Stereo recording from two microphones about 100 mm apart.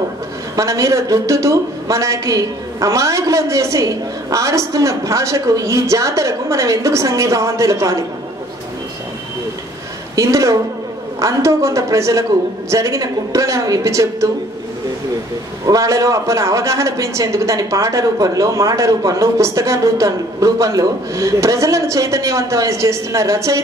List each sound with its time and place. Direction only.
0.6 s a man's voice: 30° right (ahead or behind)
10.1 s a man's voice: 30° right (ahead or behind)
15.6 s a man's voice: 35° right (ahead or behind)